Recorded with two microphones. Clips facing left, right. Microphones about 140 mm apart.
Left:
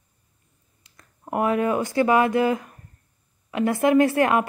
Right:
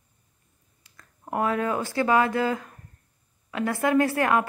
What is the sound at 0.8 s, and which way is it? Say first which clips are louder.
A woman's voice: left 2 dB; 20° left (ahead or behind).